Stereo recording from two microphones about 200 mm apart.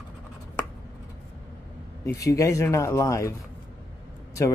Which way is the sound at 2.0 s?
15° left (ahead or behind).